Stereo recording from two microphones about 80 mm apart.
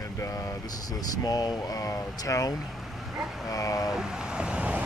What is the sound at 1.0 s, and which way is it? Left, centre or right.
Speech, left.